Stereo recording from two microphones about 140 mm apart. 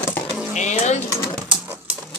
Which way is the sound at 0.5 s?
55° left (ahead or behind).